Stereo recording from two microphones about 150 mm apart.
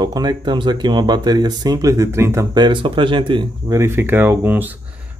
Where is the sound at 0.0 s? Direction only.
25° right (ahead or behind).